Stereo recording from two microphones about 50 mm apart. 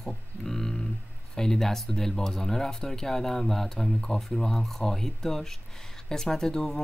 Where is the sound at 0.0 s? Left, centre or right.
Centre.